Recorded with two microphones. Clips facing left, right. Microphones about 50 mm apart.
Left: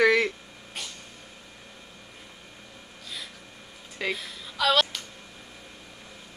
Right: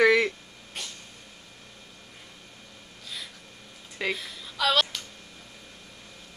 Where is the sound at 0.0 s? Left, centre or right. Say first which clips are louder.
Right 1 dB; centre.